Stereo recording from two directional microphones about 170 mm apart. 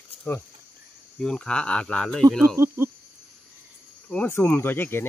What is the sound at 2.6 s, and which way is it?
Speech, 15° right (ahead or behind).